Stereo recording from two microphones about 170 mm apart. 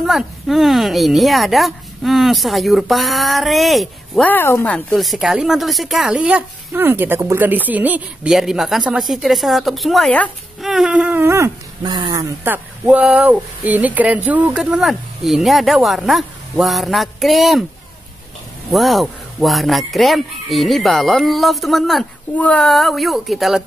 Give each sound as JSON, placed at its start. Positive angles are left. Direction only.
{"t": 0.0, "sound": "speech", "side_deg": 0}
{"t": 12.8, "sound": "speech", "side_deg": -5}
{"t": 18.7, "sound": "speech", "side_deg": 0}